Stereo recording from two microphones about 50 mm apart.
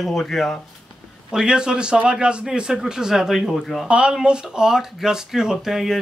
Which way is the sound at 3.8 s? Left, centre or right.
Right.